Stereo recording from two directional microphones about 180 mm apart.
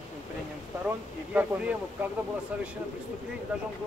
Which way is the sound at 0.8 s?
10° right (ahead or behind).